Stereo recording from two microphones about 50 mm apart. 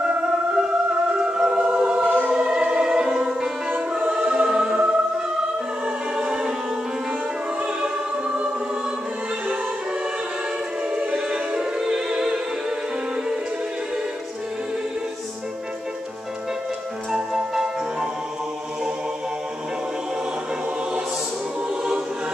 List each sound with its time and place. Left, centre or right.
0.0 s music: centre
4.0 s music: right
5.9 s choir: centre
10.8 s choir: right
11.1 s music: centre
17.1 s music: centre